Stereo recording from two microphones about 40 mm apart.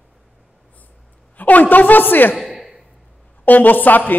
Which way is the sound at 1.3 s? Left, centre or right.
Left.